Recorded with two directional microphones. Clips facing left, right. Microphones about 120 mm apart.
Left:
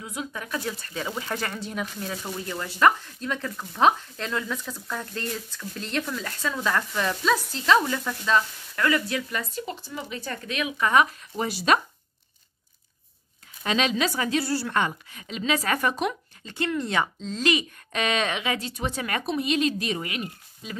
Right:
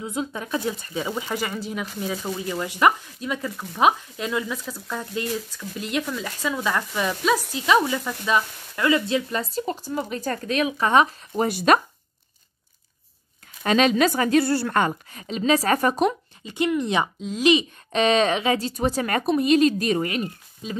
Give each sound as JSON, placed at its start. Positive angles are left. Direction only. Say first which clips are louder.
{"t": 0.0, "sound": "speech", "louder": "right 5 dB", "side_deg": -25}
{"t": 11.3, "sound": "a woman's voice", "louder": "right 4 dB", "side_deg": -50}
{"t": 13.7, "sound": "a woman's voice", "louder": "right 6 dB", "side_deg": -45}
{"t": 16.4, "sound": "speech", "louder": "right 5 dB", "side_deg": -15}
{"t": 20.6, "sound": "speech", "louder": "right 6 dB", "side_deg": -25}